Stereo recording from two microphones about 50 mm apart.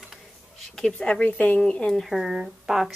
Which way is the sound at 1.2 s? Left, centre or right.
Left.